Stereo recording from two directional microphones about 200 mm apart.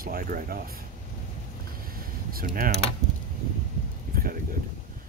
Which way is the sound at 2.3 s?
45° right (ahead or behind).